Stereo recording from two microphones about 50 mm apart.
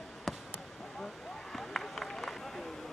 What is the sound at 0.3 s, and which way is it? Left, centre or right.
Basketball bounce, centre.